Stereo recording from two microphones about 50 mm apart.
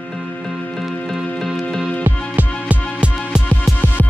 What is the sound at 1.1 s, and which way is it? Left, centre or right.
Music, centre.